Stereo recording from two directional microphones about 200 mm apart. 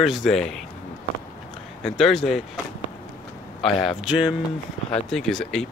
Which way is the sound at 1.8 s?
Centre (ahead or behind).